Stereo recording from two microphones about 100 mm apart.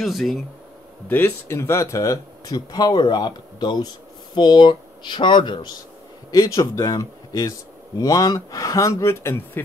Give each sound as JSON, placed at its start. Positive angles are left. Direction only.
{"t": 0.0, "sound": "speech", "side_deg": 0}
{"t": 1.0, "sound": "speech", "side_deg": 20}
{"t": 6.3, "sound": "speech", "side_deg": 35}